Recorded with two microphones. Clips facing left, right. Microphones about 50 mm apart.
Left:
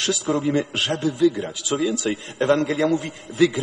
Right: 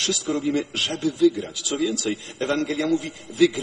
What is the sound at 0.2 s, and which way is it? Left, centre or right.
A man's voice, left.